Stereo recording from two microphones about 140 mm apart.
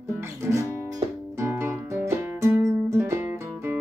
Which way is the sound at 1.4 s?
20° right (ahead or behind).